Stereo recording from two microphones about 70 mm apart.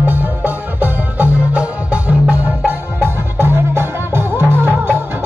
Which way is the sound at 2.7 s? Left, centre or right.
Right.